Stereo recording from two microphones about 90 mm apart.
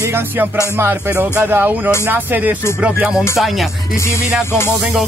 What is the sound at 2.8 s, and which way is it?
Speech, 10° right (ahead or behind).